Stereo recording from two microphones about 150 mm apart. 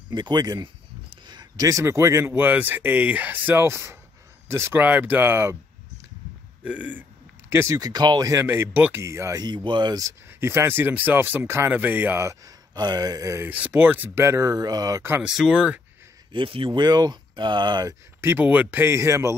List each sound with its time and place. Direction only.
0.1 s a man's voice: 30° right (ahead or behind)
6.6 s a man's voice: 10° right (ahead or behind)
15.2 s speech: 5° right (ahead or behind)
16.3 s speech: 35° right (ahead or behind)
18.2 s a man's voice: 10° right (ahead or behind)